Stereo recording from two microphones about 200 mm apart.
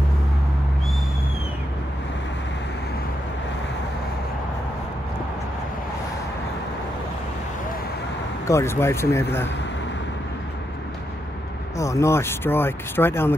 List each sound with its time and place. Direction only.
8.5 s speech: 15° left (ahead or behind)
11.8 s speech: 15° left (ahead or behind)